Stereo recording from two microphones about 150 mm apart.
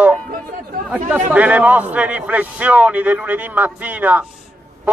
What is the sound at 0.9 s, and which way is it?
A man's voice, 10° right (ahead or behind).